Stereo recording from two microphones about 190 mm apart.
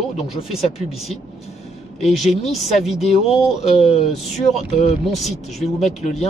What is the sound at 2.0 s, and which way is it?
Speech, centre (ahead or behind).